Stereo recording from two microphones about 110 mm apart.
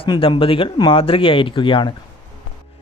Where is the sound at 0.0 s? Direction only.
50° left (ahead or behind).